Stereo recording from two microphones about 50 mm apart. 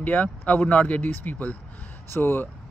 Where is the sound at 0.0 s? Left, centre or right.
Left.